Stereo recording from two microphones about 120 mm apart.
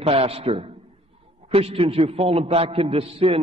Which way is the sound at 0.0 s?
50° right (ahead or behind).